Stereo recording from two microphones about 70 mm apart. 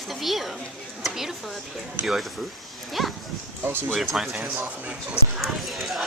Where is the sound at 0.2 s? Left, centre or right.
Centre.